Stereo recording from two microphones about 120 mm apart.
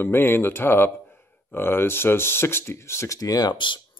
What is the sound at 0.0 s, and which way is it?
Speech, 20° left (ahead or behind).